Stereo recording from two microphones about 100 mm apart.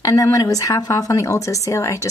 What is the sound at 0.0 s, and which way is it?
Speech, 35° left (ahead or behind).